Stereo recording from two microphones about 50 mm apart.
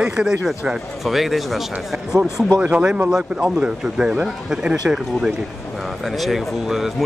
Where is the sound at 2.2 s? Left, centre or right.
Right.